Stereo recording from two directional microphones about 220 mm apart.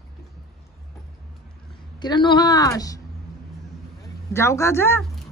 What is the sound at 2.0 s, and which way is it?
Speech, 20° left (ahead or behind).